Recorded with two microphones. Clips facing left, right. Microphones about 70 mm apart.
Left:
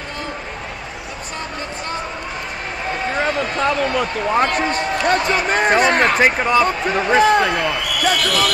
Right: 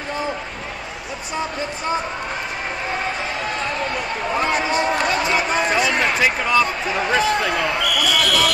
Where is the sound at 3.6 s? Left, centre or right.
Left.